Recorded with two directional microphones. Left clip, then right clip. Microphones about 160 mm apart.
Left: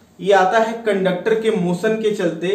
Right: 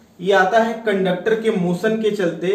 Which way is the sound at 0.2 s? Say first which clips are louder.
Left 1 dB; 25° left (ahead or behind).